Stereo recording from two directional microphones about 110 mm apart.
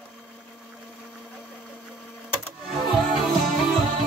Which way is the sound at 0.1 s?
10° right (ahead or behind).